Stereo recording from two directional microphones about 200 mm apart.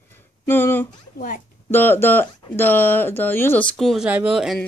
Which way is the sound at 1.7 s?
10° left (ahead or behind).